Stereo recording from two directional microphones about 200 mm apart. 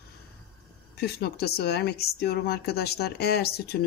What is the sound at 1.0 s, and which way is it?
Speech, 50° left (ahead or behind).